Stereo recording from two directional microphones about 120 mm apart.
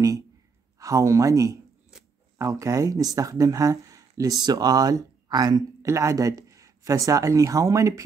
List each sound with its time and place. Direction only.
0.7 s speech: 25° right (ahead or behind)